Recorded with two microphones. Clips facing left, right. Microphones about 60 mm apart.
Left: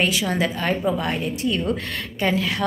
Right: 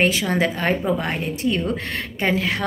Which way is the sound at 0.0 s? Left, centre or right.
Right.